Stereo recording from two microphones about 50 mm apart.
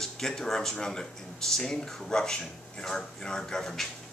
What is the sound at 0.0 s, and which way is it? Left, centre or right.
Speech, centre.